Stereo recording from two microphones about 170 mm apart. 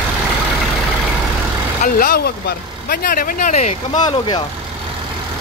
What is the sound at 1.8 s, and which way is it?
Speech, 55° left (ahead or behind).